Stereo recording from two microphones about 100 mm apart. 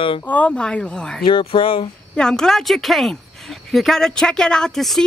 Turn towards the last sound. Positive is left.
turn(degrees=5)  # may be behind; listen again after turning